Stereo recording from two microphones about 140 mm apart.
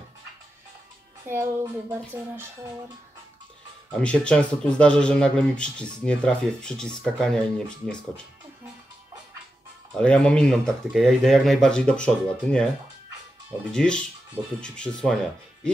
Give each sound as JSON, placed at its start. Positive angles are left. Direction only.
{"t": 1.2, "sound": "speech", "side_deg": -15}
{"t": 4.0, "sound": "speech", "side_deg": 10}
{"t": 9.9, "sound": "speech", "side_deg": 5}
{"t": 13.7, "sound": "speech", "side_deg": 5}